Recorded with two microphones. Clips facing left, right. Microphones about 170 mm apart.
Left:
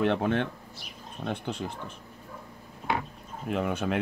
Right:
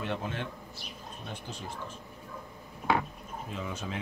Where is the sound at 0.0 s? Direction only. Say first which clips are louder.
Left 9 dB; 65° left (ahead or behind).